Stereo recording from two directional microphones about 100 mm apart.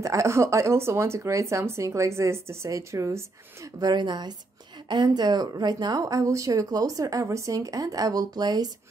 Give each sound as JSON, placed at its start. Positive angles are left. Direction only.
{"t": 0.0, "sound": "speech", "side_deg": -30}
{"t": 3.8, "sound": "a woman's voice", "side_deg": -50}